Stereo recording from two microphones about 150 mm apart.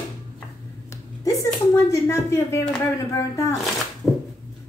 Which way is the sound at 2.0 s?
20° left (ahead or behind).